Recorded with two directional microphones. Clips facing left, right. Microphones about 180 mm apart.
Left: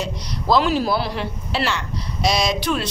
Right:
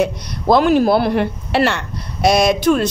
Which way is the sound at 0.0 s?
55° right (ahead or behind).